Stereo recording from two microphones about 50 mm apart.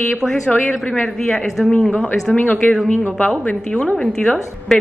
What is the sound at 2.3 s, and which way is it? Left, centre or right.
Speech, left.